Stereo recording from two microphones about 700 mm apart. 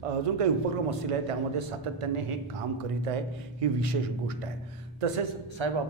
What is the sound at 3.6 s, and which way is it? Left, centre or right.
A man's voice, right.